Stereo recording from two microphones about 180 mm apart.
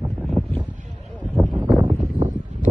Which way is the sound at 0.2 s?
Centre (ahead or behind).